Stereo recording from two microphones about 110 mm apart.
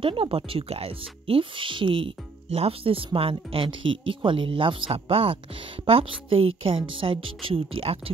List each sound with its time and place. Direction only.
0.0 s a woman's voice: 50° right (ahead or behind)